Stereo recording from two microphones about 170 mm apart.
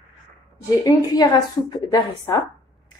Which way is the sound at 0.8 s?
20° left (ahead or behind).